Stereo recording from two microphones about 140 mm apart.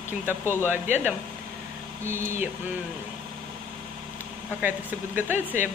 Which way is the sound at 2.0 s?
20° right (ahead or behind).